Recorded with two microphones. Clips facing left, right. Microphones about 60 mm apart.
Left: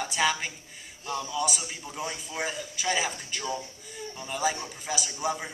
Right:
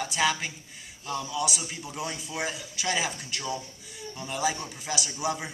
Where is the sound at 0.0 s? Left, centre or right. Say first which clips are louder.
Even; centre.